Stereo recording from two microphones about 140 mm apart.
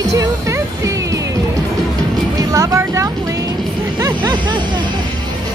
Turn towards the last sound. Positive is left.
turn(degrees=-30)  # may be behind; listen again after turning